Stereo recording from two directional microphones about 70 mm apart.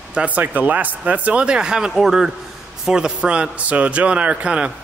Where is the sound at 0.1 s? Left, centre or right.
Centre.